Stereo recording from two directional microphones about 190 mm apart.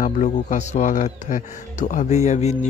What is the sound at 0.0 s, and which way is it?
A man's voice, 40° left (ahead or behind).